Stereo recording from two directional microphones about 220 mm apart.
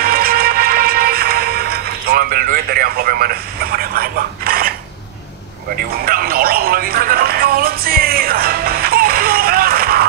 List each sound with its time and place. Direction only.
0.0 s music: 40° right (ahead or behind)
6.0 s music: 40° right (ahead or behind)